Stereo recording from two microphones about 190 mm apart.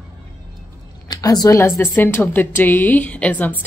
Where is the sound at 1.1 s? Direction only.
20° left (ahead or behind).